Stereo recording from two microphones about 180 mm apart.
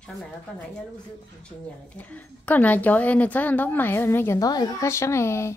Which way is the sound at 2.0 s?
10° left (ahead or behind).